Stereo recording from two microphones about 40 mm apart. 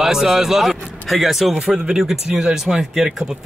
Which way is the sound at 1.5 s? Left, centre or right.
Centre.